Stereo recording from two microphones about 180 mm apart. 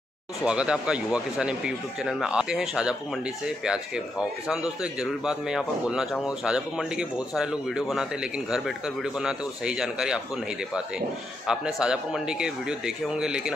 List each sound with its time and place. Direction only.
0.5 s a man's voice: 5° right (ahead or behind)